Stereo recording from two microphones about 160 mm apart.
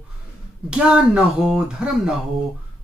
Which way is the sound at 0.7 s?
5° right (ahead or behind).